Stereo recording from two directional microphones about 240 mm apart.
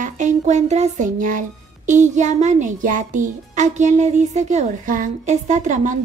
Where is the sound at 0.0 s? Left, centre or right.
Right.